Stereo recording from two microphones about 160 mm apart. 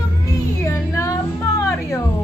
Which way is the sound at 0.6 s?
20° left (ahead or behind).